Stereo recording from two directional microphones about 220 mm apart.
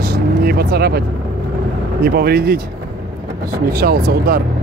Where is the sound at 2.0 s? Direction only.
45° right (ahead or behind).